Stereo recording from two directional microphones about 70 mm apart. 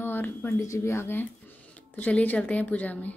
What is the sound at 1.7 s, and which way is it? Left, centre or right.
Speech, centre.